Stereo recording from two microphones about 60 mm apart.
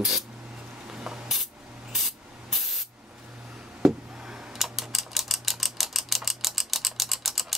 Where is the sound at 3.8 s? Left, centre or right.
Centre.